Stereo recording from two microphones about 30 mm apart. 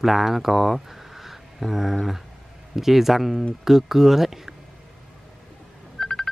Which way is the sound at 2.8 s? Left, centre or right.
Centre.